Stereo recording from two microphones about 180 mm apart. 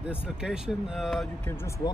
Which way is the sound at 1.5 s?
15° left (ahead or behind).